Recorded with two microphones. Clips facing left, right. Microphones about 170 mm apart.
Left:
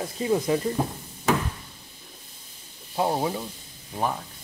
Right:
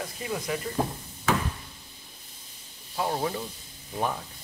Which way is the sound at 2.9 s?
20° left (ahead or behind).